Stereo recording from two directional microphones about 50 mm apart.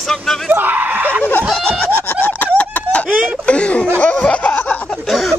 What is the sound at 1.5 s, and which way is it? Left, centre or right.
Speech, centre.